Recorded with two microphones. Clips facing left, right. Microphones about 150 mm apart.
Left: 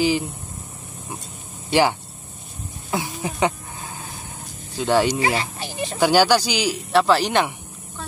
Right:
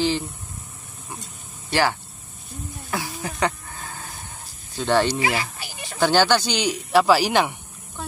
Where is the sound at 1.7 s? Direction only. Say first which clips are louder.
Left 3 dB; 15° left (ahead or behind).